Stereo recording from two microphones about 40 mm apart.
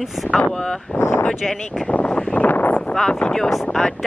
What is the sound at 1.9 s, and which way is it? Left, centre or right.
Speech, left.